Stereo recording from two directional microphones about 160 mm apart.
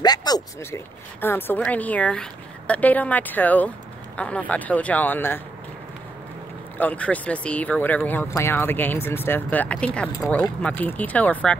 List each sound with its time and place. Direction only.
0.0 s vehicle: 25° left (ahead or behind)
1.2 s speech: 10° left (ahead or behind)
6.8 s speech: 10° left (ahead or behind)